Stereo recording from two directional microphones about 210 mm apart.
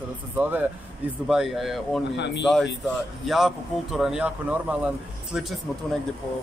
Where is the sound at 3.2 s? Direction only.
Centre (ahead or behind).